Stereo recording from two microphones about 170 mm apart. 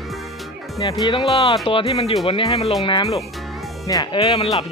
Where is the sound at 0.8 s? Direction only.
30° left (ahead or behind).